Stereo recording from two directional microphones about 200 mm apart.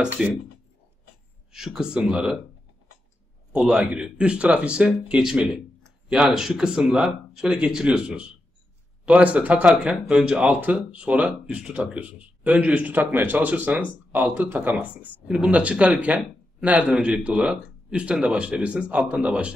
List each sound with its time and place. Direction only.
0.0 s speech: 5° right (ahead or behind)
1.5 s speech: centre (ahead or behind)
3.5 s speech: 5° right (ahead or behind)